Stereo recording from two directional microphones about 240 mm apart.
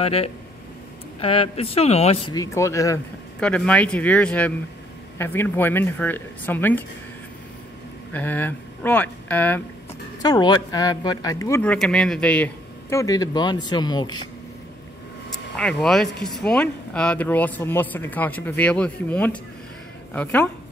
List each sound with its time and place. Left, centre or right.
0.0 s a man's voice: left
2.3 s speech: centre
8.1 s speech: centre
15.5 s speech: centre